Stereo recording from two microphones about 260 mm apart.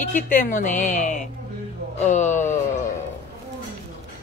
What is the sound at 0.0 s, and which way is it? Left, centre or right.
A woman's voice, left.